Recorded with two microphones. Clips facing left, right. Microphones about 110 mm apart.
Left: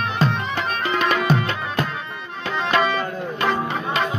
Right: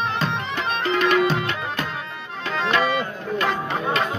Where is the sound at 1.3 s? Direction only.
40° left (ahead or behind).